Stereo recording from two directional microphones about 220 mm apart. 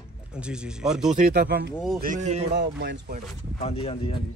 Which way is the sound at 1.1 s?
40° right (ahead or behind).